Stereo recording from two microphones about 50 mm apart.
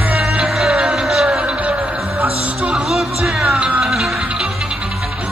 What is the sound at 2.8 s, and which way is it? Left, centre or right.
Speech, centre.